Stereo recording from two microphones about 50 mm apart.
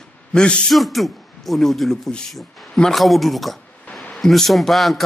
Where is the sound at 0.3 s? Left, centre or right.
Centre.